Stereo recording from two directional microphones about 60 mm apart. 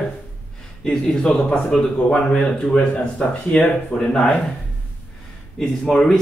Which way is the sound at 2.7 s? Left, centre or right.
Left.